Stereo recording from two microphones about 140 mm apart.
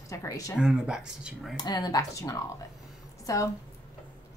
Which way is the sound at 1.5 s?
30° left (ahead or behind).